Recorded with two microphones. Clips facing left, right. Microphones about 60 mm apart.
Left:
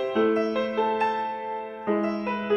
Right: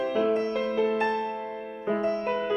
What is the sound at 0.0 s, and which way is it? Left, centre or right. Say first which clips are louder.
Music: left 2 dB; left.